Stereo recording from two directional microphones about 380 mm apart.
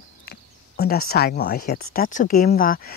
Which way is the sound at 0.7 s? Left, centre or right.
Left.